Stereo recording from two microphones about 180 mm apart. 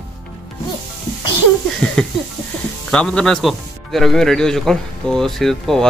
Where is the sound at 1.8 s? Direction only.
10° left (ahead or behind).